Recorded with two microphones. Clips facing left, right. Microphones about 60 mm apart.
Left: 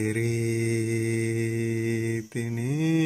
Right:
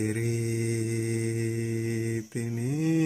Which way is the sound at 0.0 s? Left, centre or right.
Left.